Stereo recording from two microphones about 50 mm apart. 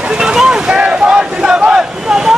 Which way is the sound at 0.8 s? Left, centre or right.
Centre.